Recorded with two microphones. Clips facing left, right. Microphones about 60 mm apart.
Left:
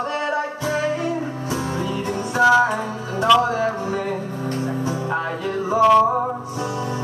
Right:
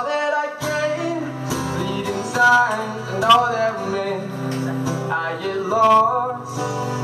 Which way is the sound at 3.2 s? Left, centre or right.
Centre.